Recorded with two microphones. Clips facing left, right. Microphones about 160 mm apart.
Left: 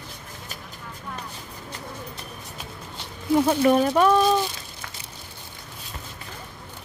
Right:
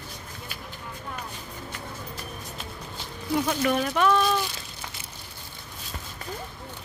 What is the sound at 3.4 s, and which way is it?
Speech, 30° left (ahead or behind).